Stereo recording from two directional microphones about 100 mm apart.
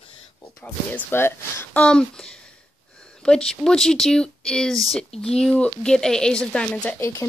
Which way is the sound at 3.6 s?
5° left (ahead or behind).